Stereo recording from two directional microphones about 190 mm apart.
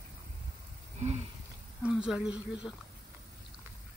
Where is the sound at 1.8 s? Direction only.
5° right (ahead or behind).